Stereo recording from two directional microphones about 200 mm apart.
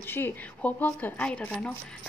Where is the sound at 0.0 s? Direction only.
10° left (ahead or behind).